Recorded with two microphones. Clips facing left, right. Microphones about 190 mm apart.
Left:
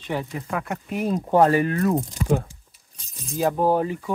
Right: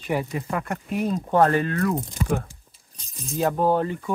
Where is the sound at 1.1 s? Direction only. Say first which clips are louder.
Left 2 dB; 15° left (ahead or behind).